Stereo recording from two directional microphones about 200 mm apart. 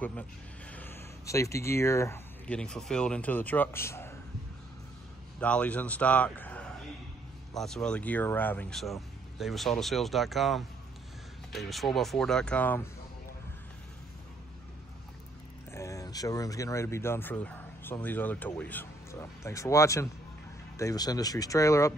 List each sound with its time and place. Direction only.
0.7 s speech: 10° left (ahead or behind)
5.4 s a man's voice: 5° left (ahead or behind)
15.7 s speech: 15° left (ahead or behind)